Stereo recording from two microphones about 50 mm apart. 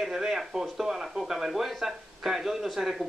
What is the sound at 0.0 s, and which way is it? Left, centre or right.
Speech, centre.